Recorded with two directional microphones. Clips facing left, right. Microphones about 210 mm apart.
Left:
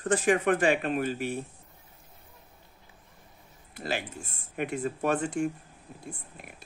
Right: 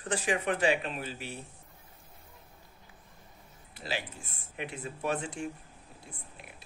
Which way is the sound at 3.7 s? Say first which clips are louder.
Left 4 dB; 50° left (ahead or behind).